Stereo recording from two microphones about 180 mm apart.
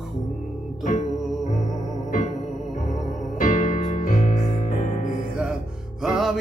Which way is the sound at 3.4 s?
45° left (ahead or behind).